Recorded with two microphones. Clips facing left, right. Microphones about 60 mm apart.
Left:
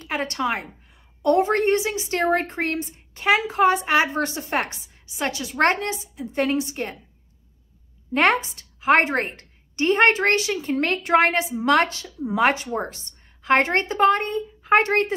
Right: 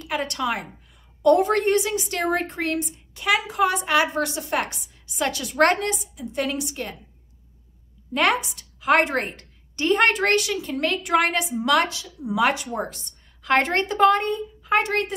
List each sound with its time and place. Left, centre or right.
0.0 s a woman's voice: left
5.6 s a woman's voice: left
6.1 s a woman's voice: left
8.1 s a woman's voice: left